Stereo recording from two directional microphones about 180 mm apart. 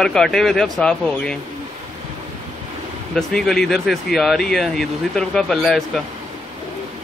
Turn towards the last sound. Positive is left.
turn(degrees=0)  # may be behind; listen again after turning